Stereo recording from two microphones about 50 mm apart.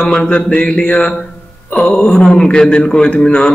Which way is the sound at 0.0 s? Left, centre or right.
Left.